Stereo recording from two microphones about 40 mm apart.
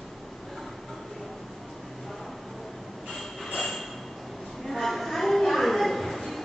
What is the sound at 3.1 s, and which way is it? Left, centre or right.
Pulleys, centre.